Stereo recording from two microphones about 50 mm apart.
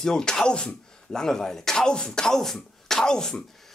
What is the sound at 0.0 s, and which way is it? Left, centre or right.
Speech, centre.